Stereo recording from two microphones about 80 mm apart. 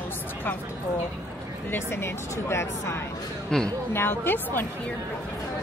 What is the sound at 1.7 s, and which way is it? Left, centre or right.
Speech, left.